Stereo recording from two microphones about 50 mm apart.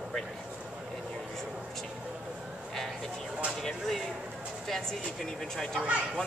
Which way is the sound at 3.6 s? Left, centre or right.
Centre.